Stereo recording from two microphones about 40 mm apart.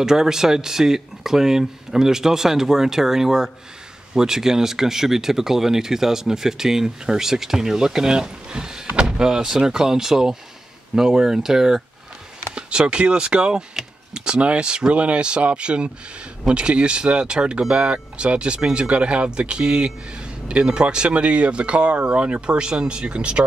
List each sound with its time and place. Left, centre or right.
0.0 s speech: centre
12.5 s speech: right